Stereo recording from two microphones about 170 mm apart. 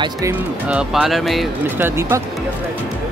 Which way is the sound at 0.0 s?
20° right (ahead or behind).